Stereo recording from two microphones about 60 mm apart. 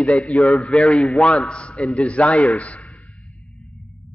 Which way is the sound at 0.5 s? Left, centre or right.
Centre.